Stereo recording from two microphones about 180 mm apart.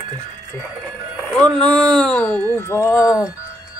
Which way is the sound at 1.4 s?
5° left (ahead or behind).